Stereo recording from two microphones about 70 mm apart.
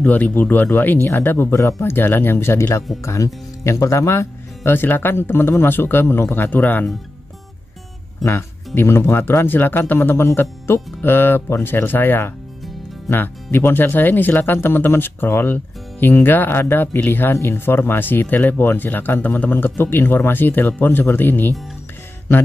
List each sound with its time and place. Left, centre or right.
0.0 s speech: left
1.5 s speech: left
8.2 s speech: left